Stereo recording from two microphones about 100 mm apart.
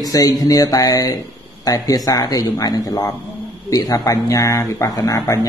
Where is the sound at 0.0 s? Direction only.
40° left (ahead or behind).